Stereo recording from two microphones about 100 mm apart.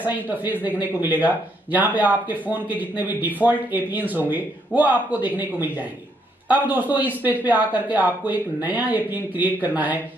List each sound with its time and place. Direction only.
0.0 s speech: 15° right (ahead or behind)